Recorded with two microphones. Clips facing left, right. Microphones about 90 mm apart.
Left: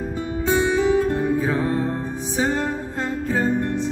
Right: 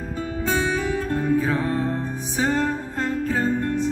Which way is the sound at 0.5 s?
20° left (ahead or behind).